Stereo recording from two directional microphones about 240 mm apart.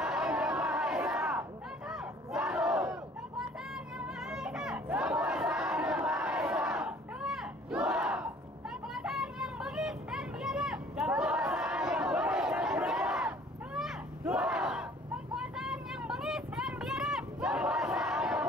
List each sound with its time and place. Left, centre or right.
0.0 s crowd: centre
1.9 s battle cry: centre
4.0 s a sound: centre
8.9 s children playing: centre
13.7 s battle cry: centre
15.3 s vehicle: centre